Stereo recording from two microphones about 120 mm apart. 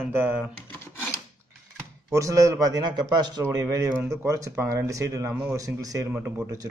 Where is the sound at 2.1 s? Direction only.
30° right (ahead or behind).